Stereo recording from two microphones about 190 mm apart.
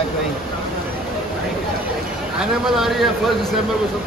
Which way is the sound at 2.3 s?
Centre (ahead or behind).